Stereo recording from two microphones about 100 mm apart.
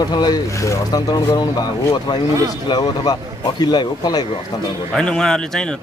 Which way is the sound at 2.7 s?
40° left (ahead or behind).